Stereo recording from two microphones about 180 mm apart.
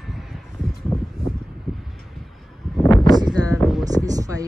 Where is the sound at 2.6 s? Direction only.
Centre (ahead or behind).